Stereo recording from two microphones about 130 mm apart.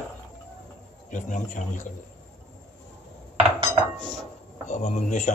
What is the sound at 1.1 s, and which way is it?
Speech, 70° left (ahead or behind).